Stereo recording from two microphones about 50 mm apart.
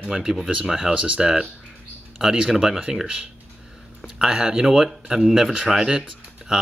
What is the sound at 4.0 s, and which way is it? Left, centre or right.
Speech, centre.